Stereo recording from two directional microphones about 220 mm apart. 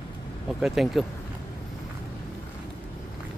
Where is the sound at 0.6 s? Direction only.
Centre (ahead or behind).